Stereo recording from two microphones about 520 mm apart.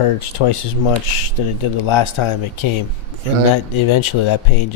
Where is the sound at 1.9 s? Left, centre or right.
Left.